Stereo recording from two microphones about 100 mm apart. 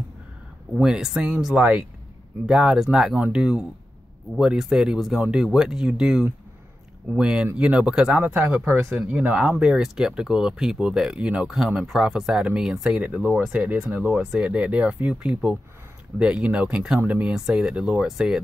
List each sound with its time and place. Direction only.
0.7 s speech: 10° right (ahead or behind)
8.3 s speech: 25° right (ahead or behind)
8.9 s speech: 15° right (ahead or behind)